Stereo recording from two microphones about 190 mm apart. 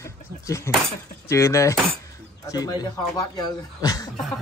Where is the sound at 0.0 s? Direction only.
15° left (ahead or behind).